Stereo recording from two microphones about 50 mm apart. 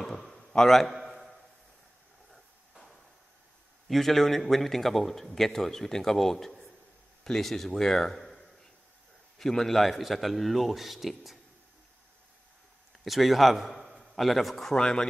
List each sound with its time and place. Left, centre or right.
0.0 s a sound: centre
3.9 s a man's voice: centre
13.0 s a man's voice: centre
14.8 s speech: centre